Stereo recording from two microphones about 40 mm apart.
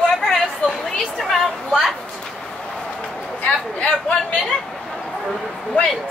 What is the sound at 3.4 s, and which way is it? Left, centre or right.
Speech, left.